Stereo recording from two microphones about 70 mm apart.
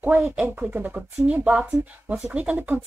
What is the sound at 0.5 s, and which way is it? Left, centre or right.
Speech, right.